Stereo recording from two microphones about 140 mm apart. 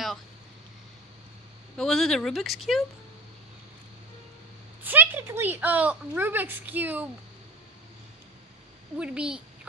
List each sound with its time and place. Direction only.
1.8 s speech: 5° left (ahead or behind)
4.8 s speech: 15° right (ahead or behind)
8.9 s speech: 10° right (ahead or behind)